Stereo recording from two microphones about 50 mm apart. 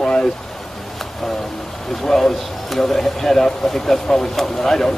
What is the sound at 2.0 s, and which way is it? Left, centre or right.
Speech, centre.